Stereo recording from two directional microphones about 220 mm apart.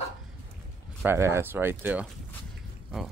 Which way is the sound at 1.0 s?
10° right (ahead or behind).